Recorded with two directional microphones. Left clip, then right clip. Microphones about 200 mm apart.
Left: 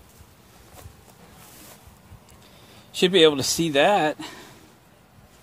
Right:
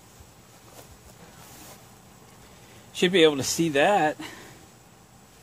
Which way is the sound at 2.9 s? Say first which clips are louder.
Left 3 dB; 35° left (ahead or behind).